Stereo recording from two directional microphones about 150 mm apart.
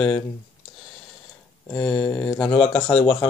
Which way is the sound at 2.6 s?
5° left (ahead or behind).